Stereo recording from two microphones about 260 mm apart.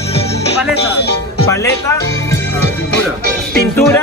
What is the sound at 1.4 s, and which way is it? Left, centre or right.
Speech, centre.